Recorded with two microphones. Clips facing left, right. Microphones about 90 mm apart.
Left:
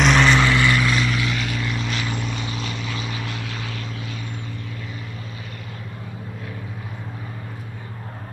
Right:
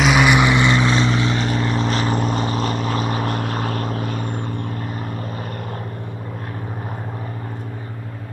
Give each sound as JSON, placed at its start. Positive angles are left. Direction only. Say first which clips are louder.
{"t": 0.0, "sound": "vehicle", "louder": "right 2 dB", "side_deg": -10}